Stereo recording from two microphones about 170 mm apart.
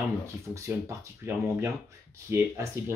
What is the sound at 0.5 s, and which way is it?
Speech, 15° right (ahead or behind).